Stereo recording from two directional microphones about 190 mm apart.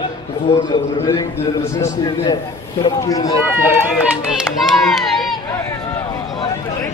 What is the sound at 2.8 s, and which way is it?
Speech, 20° left (ahead or behind).